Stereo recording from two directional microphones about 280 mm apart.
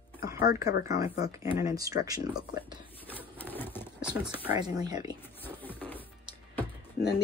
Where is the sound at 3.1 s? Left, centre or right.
Centre.